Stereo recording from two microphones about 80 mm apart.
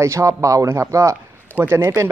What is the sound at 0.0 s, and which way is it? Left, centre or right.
Speech, right.